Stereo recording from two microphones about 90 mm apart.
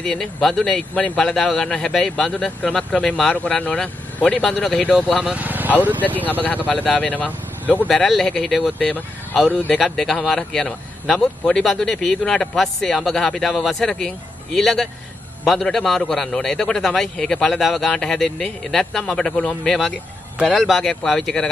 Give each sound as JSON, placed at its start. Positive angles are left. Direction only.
{"t": 0.0, "sound": "speech", "side_deg": 5}
{"t": 5.3, "sound": "speech", "side_deg": -20}
{"t": 6.4, "sound": "speech", "side_deg": 20}
{"t": 7.9, "sound": "speech", "side_deg": 5}
{"t": 8.7, "sound": "speech", "side_deg": 15}
{"t": 9.8, "sound": "speech", "side_deg": 0}